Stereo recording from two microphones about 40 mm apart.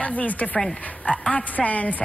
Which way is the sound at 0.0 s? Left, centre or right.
Left.